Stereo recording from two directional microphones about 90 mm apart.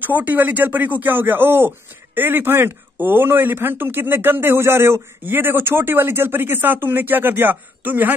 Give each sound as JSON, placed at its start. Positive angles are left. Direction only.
{"t": 0.0, "sound": "speech", "side_deg": -20}